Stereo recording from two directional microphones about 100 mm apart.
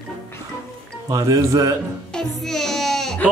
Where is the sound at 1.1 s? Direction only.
35° right (ahead or behind).